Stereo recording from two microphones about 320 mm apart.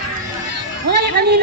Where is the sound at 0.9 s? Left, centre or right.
Right.